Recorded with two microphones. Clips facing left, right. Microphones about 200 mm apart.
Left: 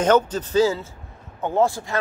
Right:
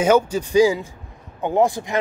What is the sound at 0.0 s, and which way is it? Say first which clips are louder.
Speech: right 2 dB; 10° right (ahead or behind).